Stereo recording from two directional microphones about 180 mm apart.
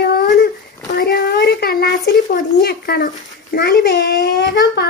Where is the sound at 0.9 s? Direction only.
55° left (ahead or behind).